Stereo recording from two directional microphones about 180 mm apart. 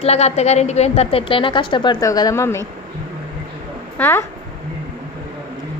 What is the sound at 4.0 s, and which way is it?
Speech, 10° left (ahead or behind).